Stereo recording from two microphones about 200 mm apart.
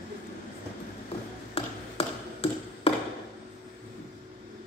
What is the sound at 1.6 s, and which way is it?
Tap, 30° left (ahead or behind).